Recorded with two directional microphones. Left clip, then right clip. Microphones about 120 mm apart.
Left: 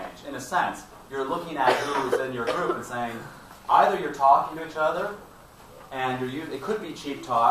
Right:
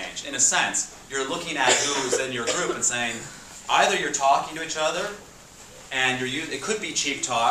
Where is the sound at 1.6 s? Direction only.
20° right (ahead or behind).